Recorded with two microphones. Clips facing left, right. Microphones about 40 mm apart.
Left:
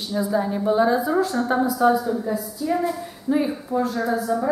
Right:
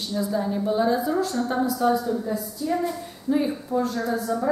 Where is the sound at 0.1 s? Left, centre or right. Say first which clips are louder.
Left 3 dB; centre.